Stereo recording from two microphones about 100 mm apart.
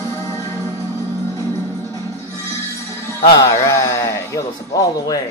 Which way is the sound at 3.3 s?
45° left (ahead or behind).